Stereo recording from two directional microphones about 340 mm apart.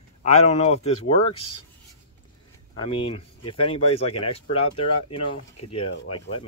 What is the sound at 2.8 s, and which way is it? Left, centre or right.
Speech, centre.